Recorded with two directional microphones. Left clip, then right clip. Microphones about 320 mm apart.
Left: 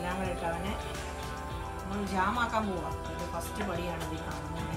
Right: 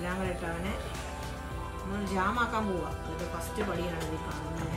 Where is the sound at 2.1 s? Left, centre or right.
Centre.